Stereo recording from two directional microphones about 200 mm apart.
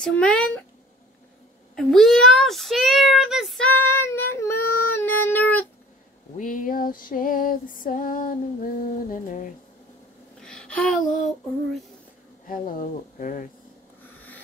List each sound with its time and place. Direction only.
0.0 s speech: 5° left (ahead or behind)
1.8 s speech: centre (ahead or behind)
4.6 s a sound: 90° left
4.9 s female singing: 10° left (ahead or behind)
6.3 s female singing: 40° left (ahead or behind)
8.8 s speech: 40° left (ahead or behind)
10.4 s a sound: 5° left (ahead or behind)
12.4 s speech: 45° left (ahead or behind)